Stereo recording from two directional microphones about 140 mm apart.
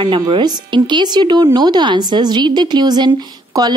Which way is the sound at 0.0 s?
35° right (ahead or behind).